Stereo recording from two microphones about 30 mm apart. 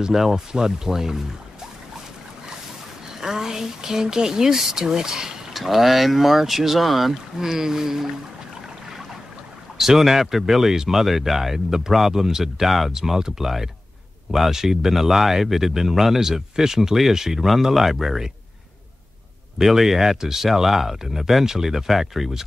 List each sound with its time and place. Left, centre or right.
0.1 s speech: centre
0.5 s speech: right
3.2 s speech: centre
5.5 s speech: centre
7.3 s speech: centre
9.8 s speech: centre
12.9 s speech: centre
19.6 s speech: centre
21.2 s speech: centre